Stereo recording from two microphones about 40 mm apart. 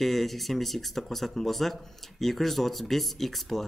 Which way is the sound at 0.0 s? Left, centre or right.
Centre.